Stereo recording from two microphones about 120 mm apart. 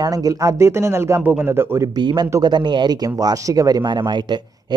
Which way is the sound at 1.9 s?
40° right (ahead or behind).